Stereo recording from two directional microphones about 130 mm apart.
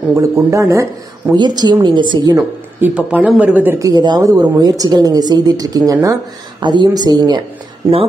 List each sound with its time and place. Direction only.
0.1 s a man's voice: 25° right (ahead or behind)
1.3 s speech: 35° right (ahead or behind)
2.9 s speech: 10° right (ahead or behind)
3.7 s a woman's voice: 30° right (ahead or behind)